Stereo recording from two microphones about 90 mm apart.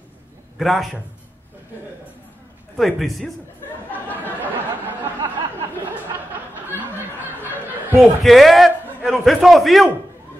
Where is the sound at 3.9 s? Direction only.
20° left (ahead or behind).